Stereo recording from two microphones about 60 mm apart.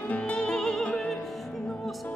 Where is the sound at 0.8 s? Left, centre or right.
Centre.